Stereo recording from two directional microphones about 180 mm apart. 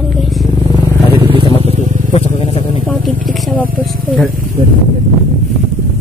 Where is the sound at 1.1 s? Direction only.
30° right (ahead or behind).